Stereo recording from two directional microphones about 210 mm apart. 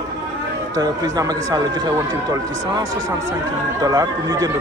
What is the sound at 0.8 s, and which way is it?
Speech, 15° right (ahead or behind).